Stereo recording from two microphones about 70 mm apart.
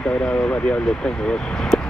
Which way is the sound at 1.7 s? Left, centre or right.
Centre.